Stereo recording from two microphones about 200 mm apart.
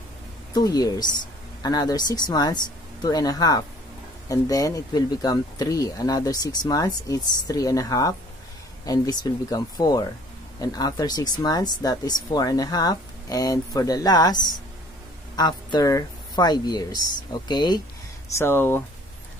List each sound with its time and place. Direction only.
0.6 s speech: 20° left (ahead or behind)
15.3 s speech: 20° left (ahead or behind)